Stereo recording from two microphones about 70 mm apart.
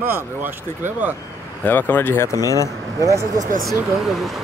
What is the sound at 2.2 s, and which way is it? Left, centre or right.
Speech, left.